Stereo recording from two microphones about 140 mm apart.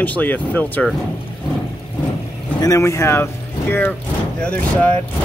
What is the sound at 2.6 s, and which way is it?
Speech, 25° left (ahead or behind).